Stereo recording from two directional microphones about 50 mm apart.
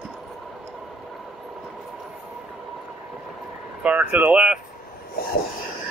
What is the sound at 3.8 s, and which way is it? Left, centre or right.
Speech, right.